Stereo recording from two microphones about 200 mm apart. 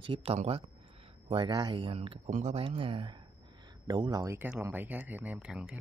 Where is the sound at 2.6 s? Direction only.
25° right (ahead or behind); by 5.8 s 5° right (ahead or behind).